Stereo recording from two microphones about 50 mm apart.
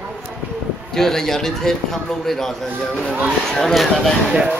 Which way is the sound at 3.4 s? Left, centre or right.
Centre.